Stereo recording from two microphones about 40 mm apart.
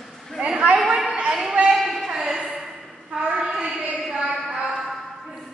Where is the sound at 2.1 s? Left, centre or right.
Centre.